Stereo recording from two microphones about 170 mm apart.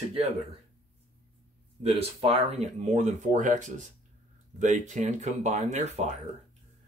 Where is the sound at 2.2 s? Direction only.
40° right (ahead or behind).